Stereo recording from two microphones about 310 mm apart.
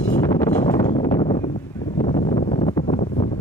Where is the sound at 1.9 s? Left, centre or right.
Centre.